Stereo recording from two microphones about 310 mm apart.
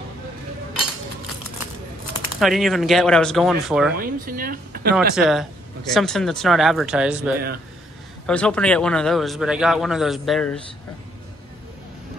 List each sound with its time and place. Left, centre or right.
2.4 s a man's voice: centre
3.9 s speech: right
4.9 s a man's voice: centre
7.3 s speech: right
8.3 s a man's voice: centre